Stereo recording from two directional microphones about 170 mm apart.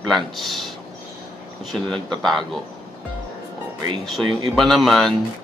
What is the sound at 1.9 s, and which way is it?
Speech, centre (ahead or behind).